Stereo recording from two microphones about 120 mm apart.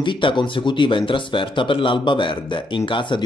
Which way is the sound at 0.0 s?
40° left (ahead or behind).